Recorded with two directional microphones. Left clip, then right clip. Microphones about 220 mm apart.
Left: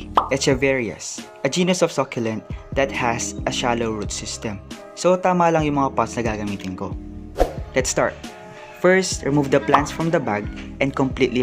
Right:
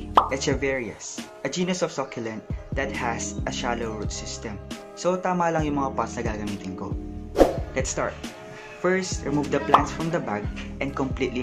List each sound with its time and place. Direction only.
0.3 s speech: 40° left (ahead or behind)
7.4 s music: centre (ahead or behind)
7.7 s speech: 45° left (ahead or behind)